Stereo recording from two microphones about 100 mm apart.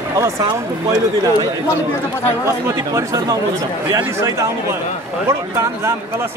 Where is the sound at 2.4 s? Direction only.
30° right (ahead or behind).